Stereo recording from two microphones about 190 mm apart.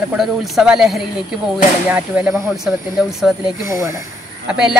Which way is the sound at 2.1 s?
Centre (ahead or behind).